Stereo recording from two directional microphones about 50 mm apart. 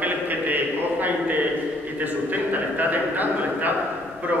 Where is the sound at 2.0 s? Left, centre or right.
Right.